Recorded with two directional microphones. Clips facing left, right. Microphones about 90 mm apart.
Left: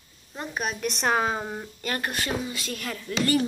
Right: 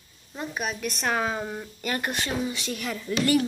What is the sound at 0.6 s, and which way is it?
Speech, centre (ahead or behind).